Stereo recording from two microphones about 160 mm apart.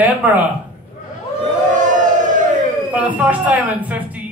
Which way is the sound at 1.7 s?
50° right (ahead or behind).